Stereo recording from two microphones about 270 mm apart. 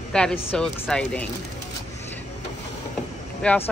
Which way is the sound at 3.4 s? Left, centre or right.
Centre.